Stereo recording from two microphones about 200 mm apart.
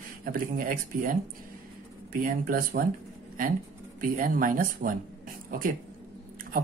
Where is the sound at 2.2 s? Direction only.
45° right (ahead or behind).